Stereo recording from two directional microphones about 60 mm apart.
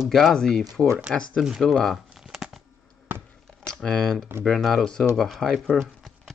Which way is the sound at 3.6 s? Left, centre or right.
Centre.